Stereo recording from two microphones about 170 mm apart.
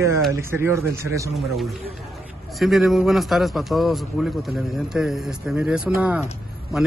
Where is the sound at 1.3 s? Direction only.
Centre (ahead or behind).